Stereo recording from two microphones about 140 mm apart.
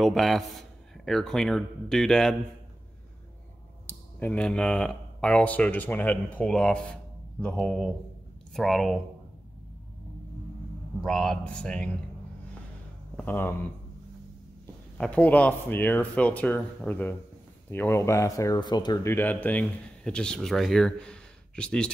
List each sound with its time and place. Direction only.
0.0 s a man's voice: centre (ahead or behind)
3.8 s a man's voice: 10° left (ahead or behind)
11.0 s a man's voice: centre (ahead or behind)
13.1 s speech: 10° left (ahead or behind)
15.0 s speech: 10° left (ahead or behind); by 18.9 s 30° left (ahead or behind)
19.0 s speech: 15° left (ahead or behind)